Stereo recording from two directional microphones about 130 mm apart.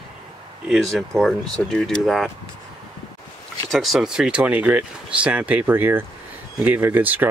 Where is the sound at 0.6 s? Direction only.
Centre (ahead or behind).